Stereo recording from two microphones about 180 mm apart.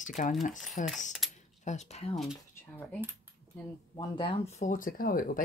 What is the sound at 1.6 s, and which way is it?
Speech, 40° left (ahead or behind).